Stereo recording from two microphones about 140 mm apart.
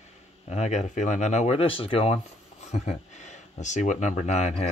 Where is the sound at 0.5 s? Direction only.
55° left (ahead or behind).